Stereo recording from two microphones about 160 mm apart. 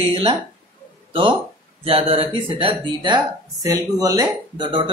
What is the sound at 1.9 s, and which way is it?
Speech, 35° right (ahead or behind).